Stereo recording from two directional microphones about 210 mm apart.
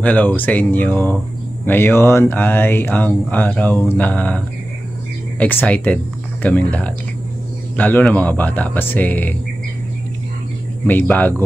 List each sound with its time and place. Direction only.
0.0 s speech: 5° left (ahead or behind)
5.4 s speech: 5° left (ahead or behind)
10.9 s speech: 10° left (ahead or behind)